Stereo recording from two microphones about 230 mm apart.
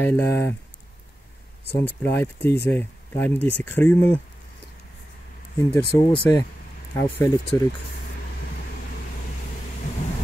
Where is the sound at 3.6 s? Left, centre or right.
Centre.